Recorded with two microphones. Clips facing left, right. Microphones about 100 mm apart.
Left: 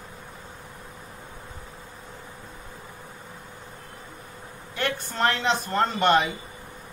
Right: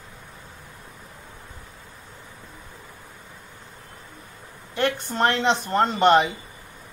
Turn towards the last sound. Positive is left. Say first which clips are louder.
# right 3 dB
turn(degrees=-20)  # may be behind; listen again after turning